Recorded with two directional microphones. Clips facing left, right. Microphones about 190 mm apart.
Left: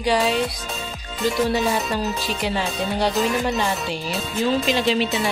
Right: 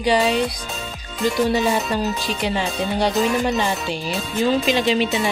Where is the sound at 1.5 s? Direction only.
Centre (ahead or behind).